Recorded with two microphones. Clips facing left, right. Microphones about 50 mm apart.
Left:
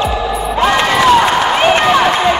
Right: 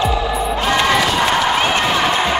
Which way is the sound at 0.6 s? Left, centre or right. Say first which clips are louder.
Left 6 dB; left.